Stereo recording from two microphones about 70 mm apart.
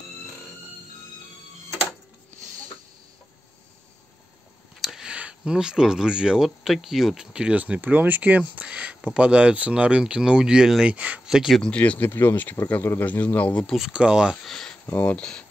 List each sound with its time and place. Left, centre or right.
4.8 s speech: centre
11.2 s speech: centre
11.6 s speech: centre
12.1 s speech: left
13.7 s speech: centre
14.4 s a sound: centre
14.9 s speech: left
15.1 s speech: centre